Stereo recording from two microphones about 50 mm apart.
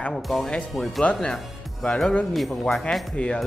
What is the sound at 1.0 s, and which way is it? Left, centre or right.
A man's voice, left.